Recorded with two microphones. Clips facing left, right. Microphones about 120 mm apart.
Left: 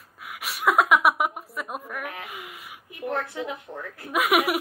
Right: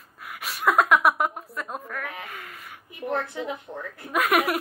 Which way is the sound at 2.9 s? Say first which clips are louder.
Right 1 dB; 25° right (ahead or behind).